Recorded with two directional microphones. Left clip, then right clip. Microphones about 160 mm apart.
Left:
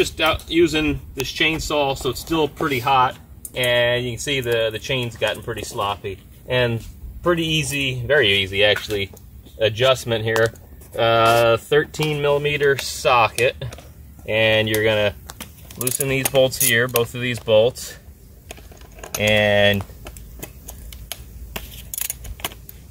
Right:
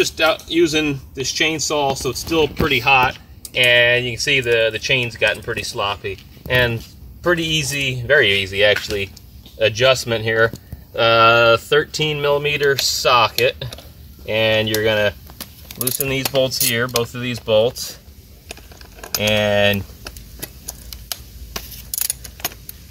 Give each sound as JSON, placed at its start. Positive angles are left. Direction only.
{"t": 0.0, "sound": "speech", "side_deg": 5}
{"t": 16.6, "sound": "speech", "side_deg": 30}
{"t": 17.1, "sound": "speech", "side_deg": 20}
{"t": 18.5, "sound": "typing", "side_deg": 10}
{"t": 21.9, "sound": "a sound", "side_deg": 10}